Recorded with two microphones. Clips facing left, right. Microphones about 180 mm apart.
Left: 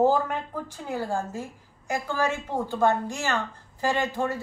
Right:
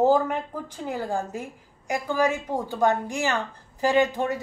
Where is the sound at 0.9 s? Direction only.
15° right (ahead or behind).